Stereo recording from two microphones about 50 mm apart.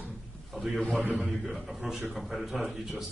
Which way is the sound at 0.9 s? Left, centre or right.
Centre.